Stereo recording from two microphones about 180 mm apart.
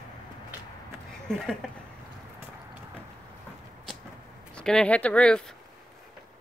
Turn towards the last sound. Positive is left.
turn(degrees=5)  # may be behind; listen again after turning